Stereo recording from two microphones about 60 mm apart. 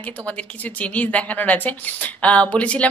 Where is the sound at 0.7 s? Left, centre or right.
Left.